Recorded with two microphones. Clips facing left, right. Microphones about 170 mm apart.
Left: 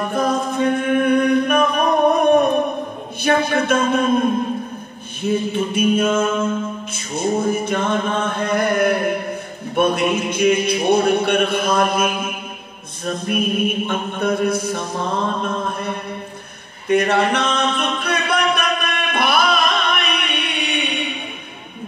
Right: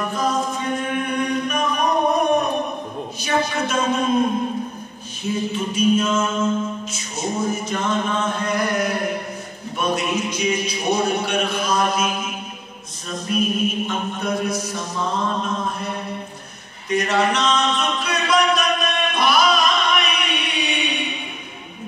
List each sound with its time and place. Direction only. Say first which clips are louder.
0.1 s singing: left 3 dB; 55° left (ahead or behind)
3.3 s mantra: left 5 dB; 55° left (ahead or behind)
5.2 s mantra: left 4 dB; 55° left (ahead or behind)
16.9 s a capella: left 3 dB; 55° left (ahead or behind)